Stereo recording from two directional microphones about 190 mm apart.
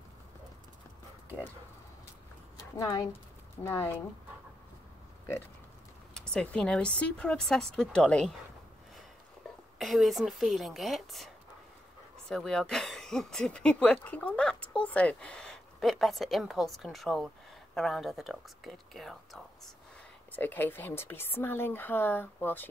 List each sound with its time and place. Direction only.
2.5 s a sound: 15° left (ahead or behind)
3.6 s speech: 10° left (ahead or behind)
6.1 s speech: 5° left (ahead or behind)
9.8 s speech: centre (ahead or behind)
12.3 s speech: 5° left (ahead or behind)